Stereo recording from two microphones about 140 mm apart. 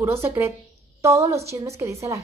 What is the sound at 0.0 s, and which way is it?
A woman's voice, 20° right (ahead or behind).